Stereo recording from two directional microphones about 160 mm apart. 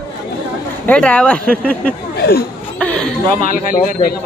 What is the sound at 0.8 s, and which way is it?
Speech, 10° left (ahead or behind).